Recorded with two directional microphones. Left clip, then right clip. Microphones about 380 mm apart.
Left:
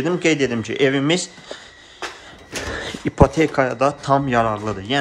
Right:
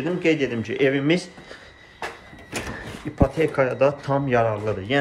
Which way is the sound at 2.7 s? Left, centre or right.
Left.